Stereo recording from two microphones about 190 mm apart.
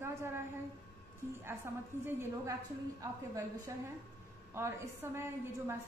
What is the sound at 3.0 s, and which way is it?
A woman's voice, 20° right (ahead or behind).